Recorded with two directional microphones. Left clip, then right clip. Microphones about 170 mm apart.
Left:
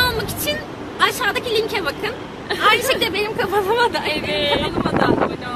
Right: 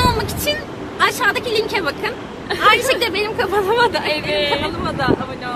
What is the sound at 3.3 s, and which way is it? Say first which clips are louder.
Speech: right 2 dB; 10° left (ahead or behind).